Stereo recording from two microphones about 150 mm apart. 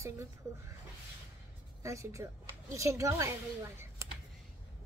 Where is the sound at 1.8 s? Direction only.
20° right (ahead or behind).